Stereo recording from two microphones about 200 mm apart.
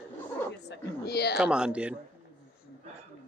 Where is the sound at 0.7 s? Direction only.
55° left (ahead or behind).